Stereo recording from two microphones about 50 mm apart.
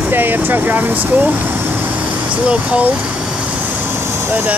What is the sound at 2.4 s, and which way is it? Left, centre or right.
Speech, right.